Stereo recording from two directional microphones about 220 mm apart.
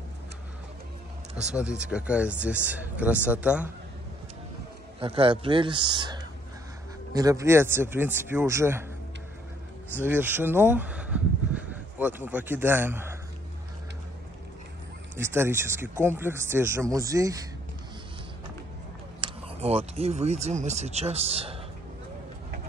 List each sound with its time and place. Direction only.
1.3 s speech: 5° right (ahead or behind)
5.0 s speech: 25° right (ahead or behind)
9.9 s speech: 10° right (ahead or behind)
15.1 s speech: 10° right (ahead or behind)
19.2 s speech: 25° right (ahead or behind)